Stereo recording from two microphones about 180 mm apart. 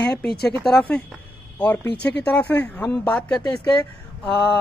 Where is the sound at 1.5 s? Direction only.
10° left (ahead or behind).